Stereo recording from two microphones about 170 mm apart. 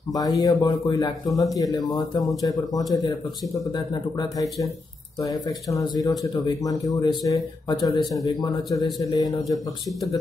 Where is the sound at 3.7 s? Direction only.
25° left (ahead or behind).